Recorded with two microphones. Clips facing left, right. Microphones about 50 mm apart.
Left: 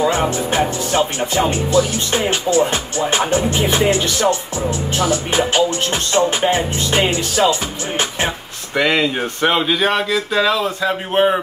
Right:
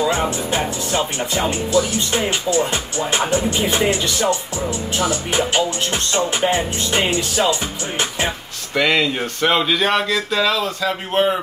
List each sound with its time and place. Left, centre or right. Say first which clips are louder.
0.0 s music: left 2 dB; left
5.9 s music: left 4 dB; left
8.7 s speech: left 1 dB; centre